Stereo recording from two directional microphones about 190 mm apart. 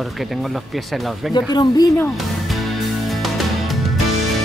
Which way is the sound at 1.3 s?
20° left (ahead or behind).